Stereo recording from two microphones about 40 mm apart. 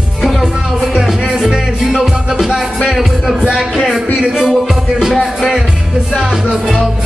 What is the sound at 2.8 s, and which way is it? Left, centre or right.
Music, centre.